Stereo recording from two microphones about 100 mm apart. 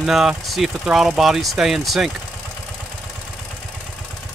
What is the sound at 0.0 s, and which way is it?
Speech, 5° right (ahead or behind).